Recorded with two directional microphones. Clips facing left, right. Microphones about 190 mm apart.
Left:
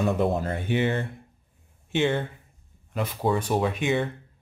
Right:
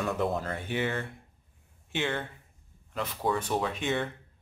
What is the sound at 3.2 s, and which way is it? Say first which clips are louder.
Speech: left 5 dB; 15° left (ahead or behind).